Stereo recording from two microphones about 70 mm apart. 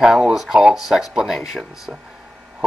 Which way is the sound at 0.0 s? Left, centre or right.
Centre.